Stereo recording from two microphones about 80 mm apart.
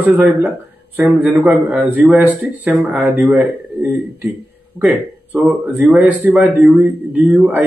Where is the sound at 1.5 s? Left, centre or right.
Centre.